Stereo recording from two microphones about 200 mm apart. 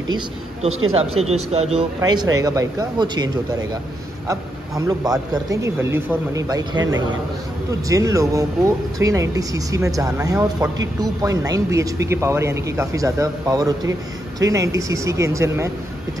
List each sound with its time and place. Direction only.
0.7 s speech: 90° right
1.5 s speech: 30° right (ahead or behind)
2.0 s speech: 20° right (ahead or behind)
4.3 s speech: 15° right (ahead or behind)
7.9 s speech: 15° right (ahead or behind)